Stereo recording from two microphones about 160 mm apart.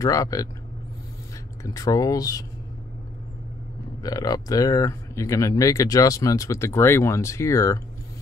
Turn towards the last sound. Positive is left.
turn(degrees=20)  # may be behind; listen again after turning